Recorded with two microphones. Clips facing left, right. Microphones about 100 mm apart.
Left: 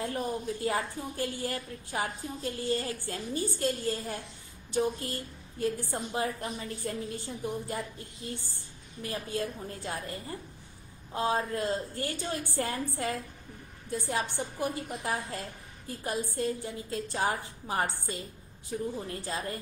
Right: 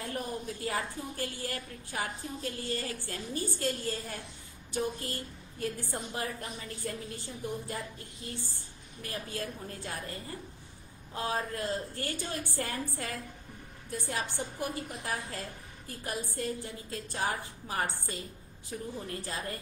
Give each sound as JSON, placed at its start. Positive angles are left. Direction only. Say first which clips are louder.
{"t": 0.0, "sound": "a woman's voice", "louder": "left 4 dB", "side_deg": 25}
{"t": 9.0, "sound": "a woman's voice", "louder": "left 4 dB", "side_deg": 20}